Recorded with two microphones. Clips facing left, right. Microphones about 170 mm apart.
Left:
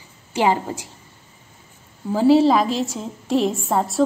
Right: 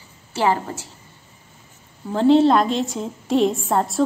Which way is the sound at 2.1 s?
5° left (ahead or behind).